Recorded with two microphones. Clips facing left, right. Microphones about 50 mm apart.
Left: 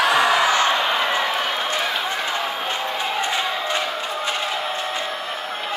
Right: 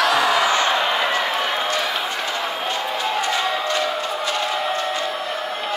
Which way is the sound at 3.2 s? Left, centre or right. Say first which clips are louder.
Right 2 dB; centre.